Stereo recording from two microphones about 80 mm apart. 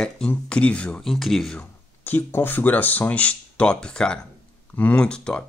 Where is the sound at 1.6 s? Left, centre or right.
Left.